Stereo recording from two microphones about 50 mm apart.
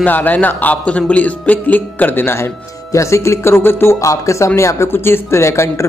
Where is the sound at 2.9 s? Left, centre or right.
Left.